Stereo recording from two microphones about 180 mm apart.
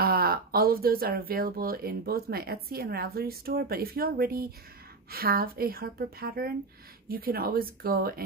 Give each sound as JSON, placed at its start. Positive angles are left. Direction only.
{"t": 0.0, "sound": "speech", "side_deg": -55}